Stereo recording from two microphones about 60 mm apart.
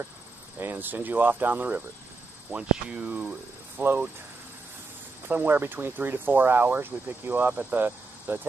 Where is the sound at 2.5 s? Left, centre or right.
Centre.